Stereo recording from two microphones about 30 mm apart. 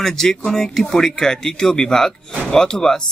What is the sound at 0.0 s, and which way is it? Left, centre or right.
Speech, centre.